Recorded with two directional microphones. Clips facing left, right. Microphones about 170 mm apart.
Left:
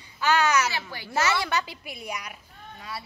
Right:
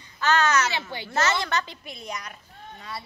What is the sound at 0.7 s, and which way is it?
Speech, 25° right (ahead or behind).